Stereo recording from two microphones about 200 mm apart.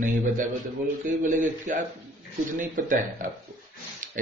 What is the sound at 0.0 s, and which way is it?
A man's voice, 40° right (ahead or behind).